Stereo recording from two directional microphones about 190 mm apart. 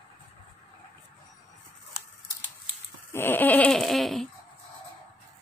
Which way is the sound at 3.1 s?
10° left (ahead or behind).